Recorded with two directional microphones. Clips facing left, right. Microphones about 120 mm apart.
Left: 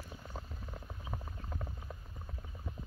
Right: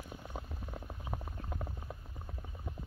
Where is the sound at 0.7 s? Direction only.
20° right (ahead or behind).